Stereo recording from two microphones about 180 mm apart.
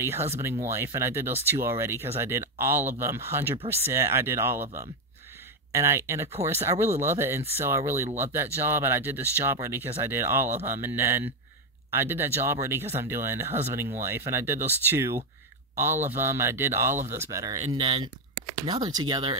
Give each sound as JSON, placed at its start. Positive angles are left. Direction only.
{"t": 0.0, "sound": "speech", "side_deg": -15}
{"t": 17.7, "sound": "speech", "side_deg": -30}